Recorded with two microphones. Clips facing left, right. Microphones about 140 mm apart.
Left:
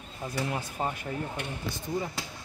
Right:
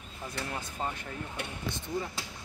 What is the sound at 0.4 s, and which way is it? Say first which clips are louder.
Speech: left 5 dB; 15° left (ahead or behind).